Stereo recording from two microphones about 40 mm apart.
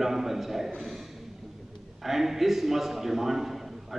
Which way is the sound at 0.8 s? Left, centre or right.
Centre.